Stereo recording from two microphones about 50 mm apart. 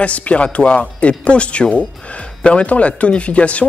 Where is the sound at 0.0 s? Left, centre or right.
Left.